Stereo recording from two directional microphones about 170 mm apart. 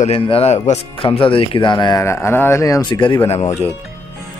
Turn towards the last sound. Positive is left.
turn(degrees=40)  # may be behind; listen again after turning